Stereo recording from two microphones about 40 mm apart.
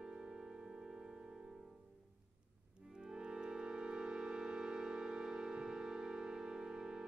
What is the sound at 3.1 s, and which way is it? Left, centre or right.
Music, right.